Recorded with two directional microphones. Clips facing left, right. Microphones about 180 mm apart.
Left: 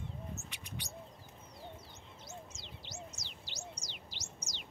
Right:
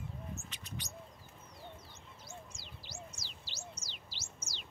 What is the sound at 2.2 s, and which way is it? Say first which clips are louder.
Bird: left 2 dB; 20° left (ahead or behind).